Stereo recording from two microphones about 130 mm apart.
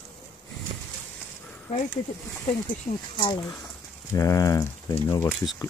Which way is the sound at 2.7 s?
35° left (ahead or behind).